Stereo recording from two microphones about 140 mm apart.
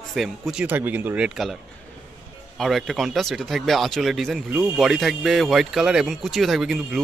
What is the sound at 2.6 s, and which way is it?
Speech, centre (ahead or behind).